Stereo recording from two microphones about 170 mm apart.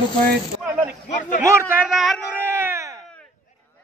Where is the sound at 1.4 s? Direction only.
15° right (ahead or behind).